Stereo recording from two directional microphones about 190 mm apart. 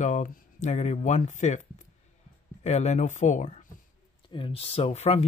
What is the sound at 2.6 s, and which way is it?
Speech, 35° left (ahead or behind).